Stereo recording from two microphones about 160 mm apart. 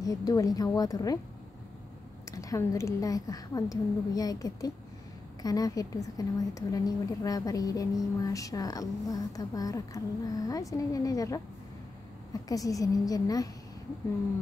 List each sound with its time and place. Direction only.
0.0 s a woman's voice: 20° left (ahead or behind)
2.3 s a woman's voice: 20° left (ahead or behind)